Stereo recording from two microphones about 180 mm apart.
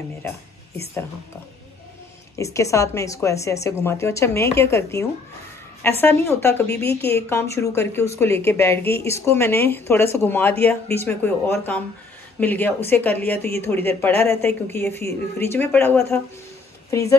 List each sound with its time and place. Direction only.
2.3 s speech: 15° left (ahead or behind)